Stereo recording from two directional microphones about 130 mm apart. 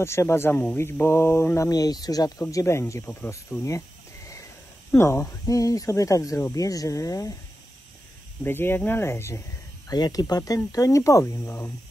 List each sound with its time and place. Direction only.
0.0 s speech: 20° left (ahead or behind)
4.9 s speech: 20° left (ahead or behind)
8.5 s speech: 15° left (ahead or behind)
9.8 s speech: 30° left (ahead or behind)